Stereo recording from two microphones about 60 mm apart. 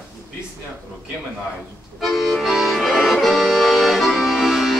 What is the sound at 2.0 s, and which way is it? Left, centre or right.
Accordion, centre.